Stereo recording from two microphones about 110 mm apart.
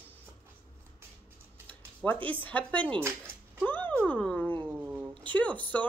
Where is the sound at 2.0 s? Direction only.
15° left (ahead or behind).